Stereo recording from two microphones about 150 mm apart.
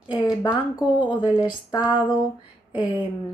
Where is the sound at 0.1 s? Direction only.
30° left (ahead or behind).